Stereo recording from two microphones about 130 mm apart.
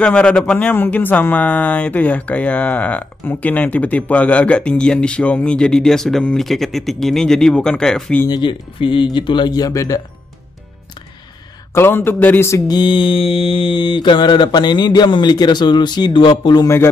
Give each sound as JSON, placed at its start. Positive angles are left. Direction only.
{"t": 0.0, "sound": "speech", "side_deg": 10}
{"t": 8.3, "sound": "mantra", "side_deg": 40}
{"t": 11.7, "sound": "mantra", "side_deg": 15}